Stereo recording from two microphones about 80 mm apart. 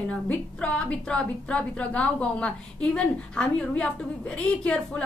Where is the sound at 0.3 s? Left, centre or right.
Centre.